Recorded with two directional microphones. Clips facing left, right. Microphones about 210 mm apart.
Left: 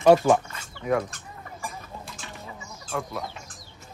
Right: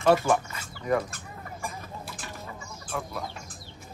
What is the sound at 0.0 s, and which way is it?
Speech, 20° left (ahead or behind).